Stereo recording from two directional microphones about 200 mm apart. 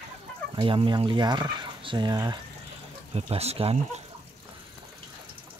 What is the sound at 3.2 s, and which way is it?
Speech, 30° right (ahead or behind).